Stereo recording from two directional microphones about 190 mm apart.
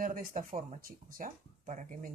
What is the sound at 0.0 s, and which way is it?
Speech, 45° right (ahead or behind).